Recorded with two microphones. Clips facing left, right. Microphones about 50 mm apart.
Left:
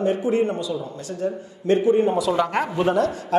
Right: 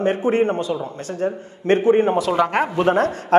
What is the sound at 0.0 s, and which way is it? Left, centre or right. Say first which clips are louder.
A man's voice: right 2 dB; right.